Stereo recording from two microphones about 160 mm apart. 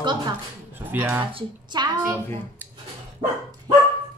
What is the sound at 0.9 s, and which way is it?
Speech, 10° right (ahead or behind).